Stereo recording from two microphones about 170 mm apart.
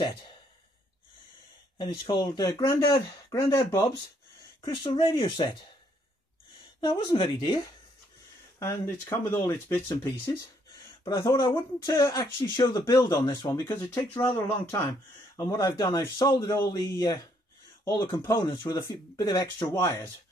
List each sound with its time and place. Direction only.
1.8 s a man's voice: 25° left (ahead or behind)
4.6 s a man's voice: 30° left (ahead or behind)
6.8 s a man's voice: 25° left (ahead or behind)